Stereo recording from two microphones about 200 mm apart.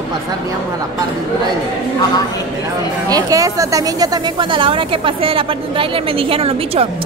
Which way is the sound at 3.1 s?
15° right (ahead or behind).